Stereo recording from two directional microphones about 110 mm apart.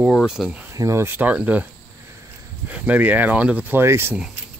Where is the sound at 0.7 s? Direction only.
30° right (ahead or behind); by 1.6 s 15° right (ahead or behind).